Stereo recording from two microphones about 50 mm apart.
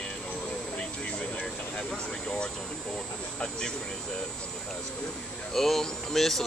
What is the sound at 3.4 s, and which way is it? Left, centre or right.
Speech, centre.